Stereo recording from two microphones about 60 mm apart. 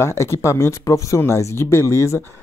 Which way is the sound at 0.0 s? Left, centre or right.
Left.